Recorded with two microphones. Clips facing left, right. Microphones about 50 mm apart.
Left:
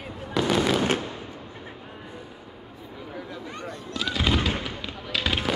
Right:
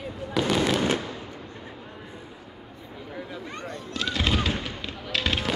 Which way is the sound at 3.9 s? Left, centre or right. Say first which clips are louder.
Left 1 dB; centre.